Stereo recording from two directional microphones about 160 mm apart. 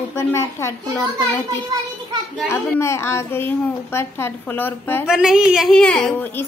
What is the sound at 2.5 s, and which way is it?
A child's voice, 15° left (ahead or behind).